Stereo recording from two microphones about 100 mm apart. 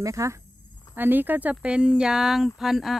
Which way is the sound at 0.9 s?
20° right (ahead or behind).